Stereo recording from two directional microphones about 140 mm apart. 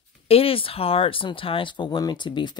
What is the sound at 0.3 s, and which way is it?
Speech, 40° left (ahead or behind).